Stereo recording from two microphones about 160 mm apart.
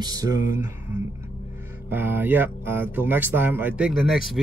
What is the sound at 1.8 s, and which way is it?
Speech, 10° right (ahead or behind).